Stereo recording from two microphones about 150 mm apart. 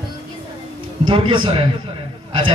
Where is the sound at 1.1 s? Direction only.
35° right (ahead or behind).